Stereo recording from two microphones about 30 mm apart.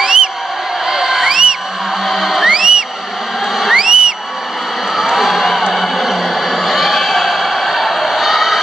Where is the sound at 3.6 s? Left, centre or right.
Centre.